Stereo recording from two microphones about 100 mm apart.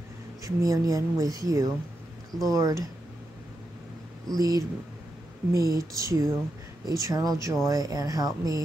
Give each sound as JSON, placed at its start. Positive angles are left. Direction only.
{"t": 0.4, "sound": "speech", "side_deg": -35}
{"t": 4.3, "sound": "speech", "side_deg": -40}